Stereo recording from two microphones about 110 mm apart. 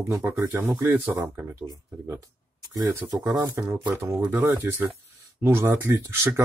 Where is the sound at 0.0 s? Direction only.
25° right (ahead or behind).